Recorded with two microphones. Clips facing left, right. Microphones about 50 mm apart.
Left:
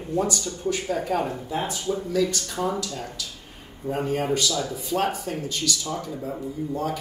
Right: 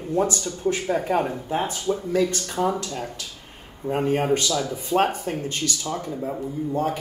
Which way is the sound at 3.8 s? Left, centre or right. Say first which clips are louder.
Right 3 dB; right.